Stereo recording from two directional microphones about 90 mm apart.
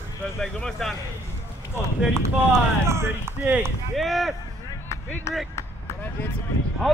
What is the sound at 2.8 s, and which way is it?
Speech, 30° right (ahead or behind).